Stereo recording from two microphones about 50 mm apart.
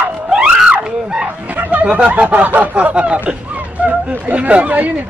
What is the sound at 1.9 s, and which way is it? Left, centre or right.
Speech, right.